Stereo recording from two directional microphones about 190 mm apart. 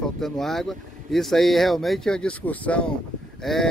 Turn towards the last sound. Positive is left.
turn(degrees=0)  # may be behind; listen again after turning